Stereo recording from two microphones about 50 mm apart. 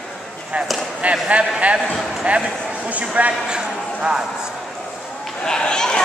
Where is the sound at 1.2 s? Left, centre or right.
Right.